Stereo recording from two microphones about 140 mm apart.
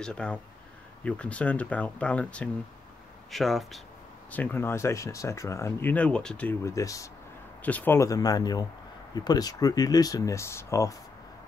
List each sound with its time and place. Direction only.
0.0 s speech: 5° left (ahead or behind)
4.3 s speech: 10° left (ahead or behind)
6.6 s speech: 25° left (ahead or behind)
7.6 s speech: 10° left (ahead or behind)